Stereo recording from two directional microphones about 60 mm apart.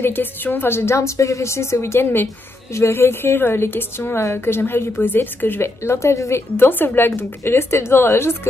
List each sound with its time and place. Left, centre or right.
0.0 s a woman's voice: left
5.8 s a woman's voice: left